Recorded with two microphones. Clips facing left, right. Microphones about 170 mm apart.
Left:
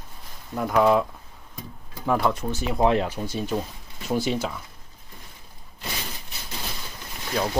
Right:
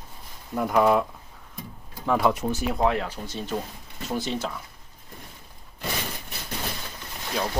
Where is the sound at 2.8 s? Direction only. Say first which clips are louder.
Left 4 dB; 25° left (ahead or behind).